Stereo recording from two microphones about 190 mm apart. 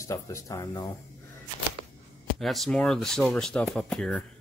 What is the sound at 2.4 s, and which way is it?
Speech, centre (ahead or behind).